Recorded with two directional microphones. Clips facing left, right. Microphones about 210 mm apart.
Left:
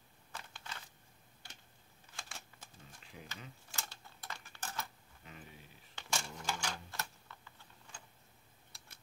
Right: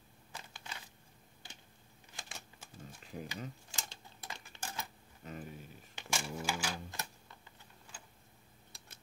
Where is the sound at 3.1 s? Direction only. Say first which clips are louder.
Right 9 dB; 40° right (ahead or behind).